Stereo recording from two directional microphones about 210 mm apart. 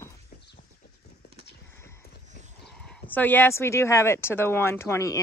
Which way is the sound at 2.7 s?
5° left (ahead or behind).